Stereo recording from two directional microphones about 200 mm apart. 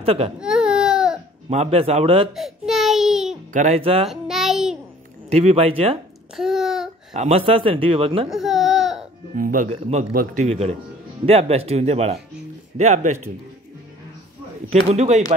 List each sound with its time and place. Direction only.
0.0 s speech: 30° right (ahead or behind)
0.4 s baby cry: 5° right (ahead or behind)
1.5 s speech: 30° right (ahead or behind)
2.3 s a sound: centre (ahead or behind)
3.5 s speech: 35° right (ahead or behind)
4.1 s child singing: centre (ahead or behind)
5.3 s a man's voice: 30° right (ahead or behind)
6.3 s a sound: centre (ahead or behind)
7.2 s a man's voice: 30° right (ahead or behind)
8.3 s baby cry: centre (ahead or behind)
9.3 s speech: 40° right (ahead or behind)
14.7 s speech: 30° right (ahead or behind)